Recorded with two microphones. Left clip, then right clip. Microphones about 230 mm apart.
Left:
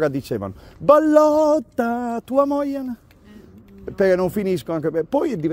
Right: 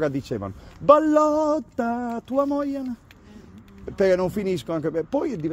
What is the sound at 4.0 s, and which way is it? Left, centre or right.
Speech, left.